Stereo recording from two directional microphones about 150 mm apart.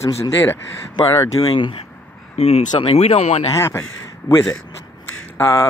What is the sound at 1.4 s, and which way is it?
Speech, 35° left (ahead or behind).